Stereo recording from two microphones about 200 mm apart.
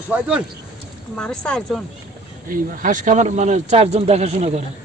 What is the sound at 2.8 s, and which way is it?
Speech, 40° right (ahead or behind).